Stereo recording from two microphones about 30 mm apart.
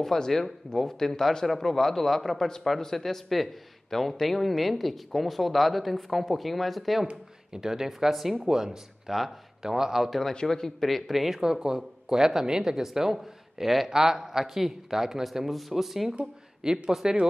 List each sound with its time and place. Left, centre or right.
0.1 s a man's voice: centre
7.5 s speech: centre
8.1 s speech: centre
8.5 s speech: centre
10.0 s speech: centre
10.4 s a man's voice: centre
10.8 s speech: centre
11.4 s speech: centre
13.2 s speech: centre
13.8 s speech: centre
16.6 s speech: right